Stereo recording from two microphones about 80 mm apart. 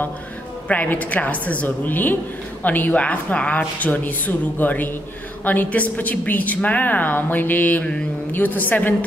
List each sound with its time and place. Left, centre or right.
0.7 s a woman's voice: centre